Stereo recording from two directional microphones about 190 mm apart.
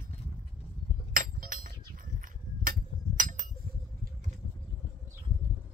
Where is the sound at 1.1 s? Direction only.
45° right (ahead or behind).